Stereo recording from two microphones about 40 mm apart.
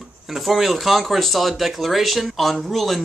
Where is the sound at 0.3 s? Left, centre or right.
Centre.